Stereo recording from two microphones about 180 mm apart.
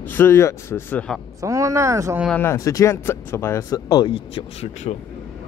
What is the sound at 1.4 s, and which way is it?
Speech, 15° right (ahead or behind).